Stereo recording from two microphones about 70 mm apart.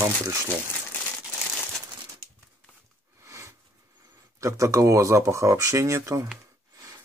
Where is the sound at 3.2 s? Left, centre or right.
Right.